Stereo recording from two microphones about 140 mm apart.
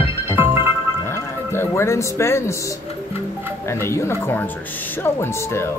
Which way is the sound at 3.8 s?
20° left (ahead or behind).